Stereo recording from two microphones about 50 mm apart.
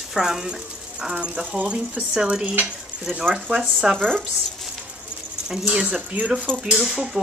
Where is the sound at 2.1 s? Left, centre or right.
Centre.